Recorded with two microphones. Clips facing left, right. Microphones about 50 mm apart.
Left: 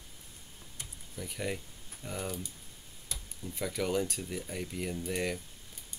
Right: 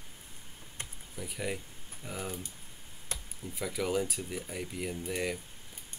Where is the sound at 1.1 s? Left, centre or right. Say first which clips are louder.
Even; centre.